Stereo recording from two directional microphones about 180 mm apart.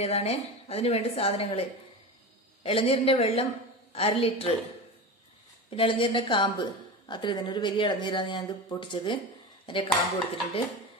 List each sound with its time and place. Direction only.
0.0 s a woman's voice: 35° left (ahead or behind)
5.8 s a woman's voice: 30° left (ahead or behind)